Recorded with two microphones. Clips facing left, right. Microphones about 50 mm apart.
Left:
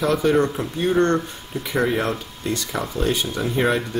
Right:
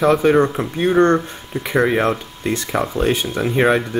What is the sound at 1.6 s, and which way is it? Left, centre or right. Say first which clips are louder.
Speech: right 5 dB; right.